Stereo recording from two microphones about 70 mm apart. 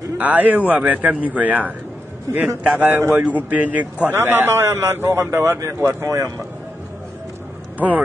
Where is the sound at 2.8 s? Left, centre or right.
Right.